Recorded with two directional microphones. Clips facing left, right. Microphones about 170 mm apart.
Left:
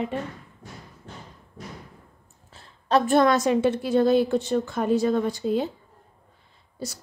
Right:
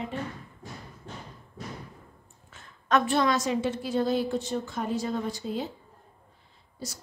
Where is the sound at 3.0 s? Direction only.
50° left (ahead or behind).